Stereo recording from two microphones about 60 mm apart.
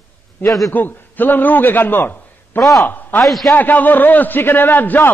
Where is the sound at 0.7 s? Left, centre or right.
Left.